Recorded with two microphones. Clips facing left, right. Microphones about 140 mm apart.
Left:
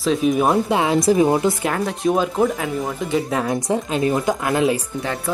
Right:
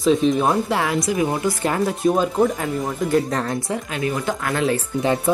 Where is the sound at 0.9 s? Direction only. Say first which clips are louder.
Left 5 dB; 30° left (ahead or behind).